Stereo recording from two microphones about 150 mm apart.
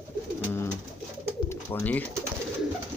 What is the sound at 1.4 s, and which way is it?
Bird, 10° left (ahead or behind).